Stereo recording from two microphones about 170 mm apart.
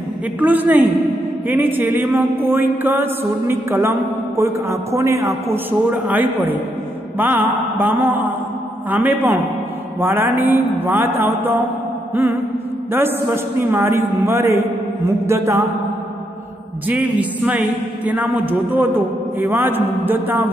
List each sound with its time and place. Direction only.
0.4 s a man's voice: 10° right (ahead or behind)
12.9 s a man's voice: 10° right (ahead or behind)
16.8 s a man's voice: 10° right (ahead or behind)